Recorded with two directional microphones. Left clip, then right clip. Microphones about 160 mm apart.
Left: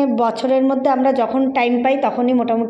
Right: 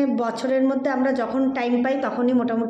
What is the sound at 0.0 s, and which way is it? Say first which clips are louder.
A woman's voice: left 6 dB; 15° left (ahead or behind).